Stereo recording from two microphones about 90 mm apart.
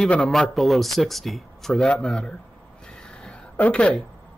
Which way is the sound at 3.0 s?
10° left (ahead or behind).